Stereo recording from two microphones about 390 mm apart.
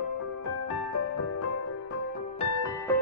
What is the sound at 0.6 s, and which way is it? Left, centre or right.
Music, left.